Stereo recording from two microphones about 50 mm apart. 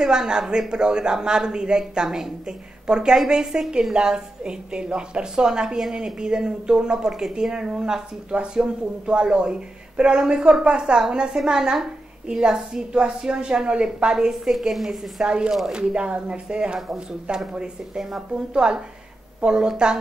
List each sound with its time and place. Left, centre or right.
0.0 s speech: centre